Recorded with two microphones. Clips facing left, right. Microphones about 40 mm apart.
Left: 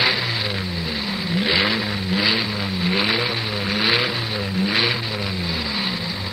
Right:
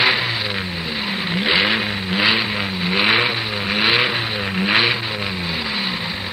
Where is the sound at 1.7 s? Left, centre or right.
Right.